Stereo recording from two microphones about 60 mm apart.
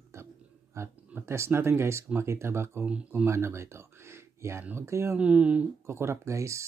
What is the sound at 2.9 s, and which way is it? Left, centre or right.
Speech, centre.